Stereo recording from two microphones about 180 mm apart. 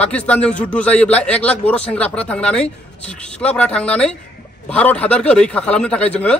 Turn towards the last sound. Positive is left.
turn(degrees=5)  # may be behind; listen again after turning